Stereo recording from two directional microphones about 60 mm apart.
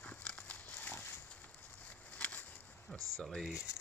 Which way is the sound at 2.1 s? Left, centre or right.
Left.